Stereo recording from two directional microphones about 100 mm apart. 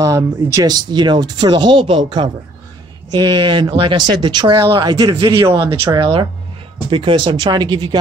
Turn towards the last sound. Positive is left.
turn(degrees=-45)  # may be behind; listen again after turning